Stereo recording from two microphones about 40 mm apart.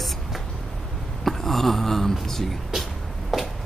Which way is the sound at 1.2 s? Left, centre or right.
Centre.